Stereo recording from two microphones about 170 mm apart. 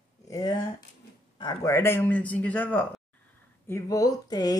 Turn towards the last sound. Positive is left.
turn(degrees=20)  # may be behind; listen again after turning